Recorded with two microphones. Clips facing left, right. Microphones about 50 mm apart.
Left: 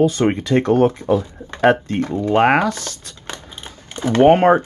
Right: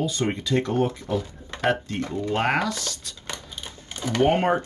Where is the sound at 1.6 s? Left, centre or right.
Left.